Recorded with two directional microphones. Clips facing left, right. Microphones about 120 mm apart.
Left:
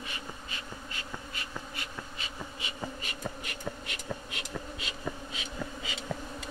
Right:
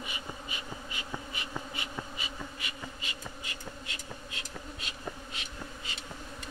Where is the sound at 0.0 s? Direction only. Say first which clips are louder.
Right 1 dB; 10° right (ahead or behind).